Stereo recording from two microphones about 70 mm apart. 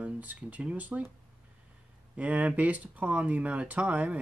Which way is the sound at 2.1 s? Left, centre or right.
Centre.